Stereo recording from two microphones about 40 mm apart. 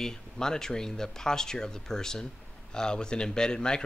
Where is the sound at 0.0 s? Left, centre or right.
Centre.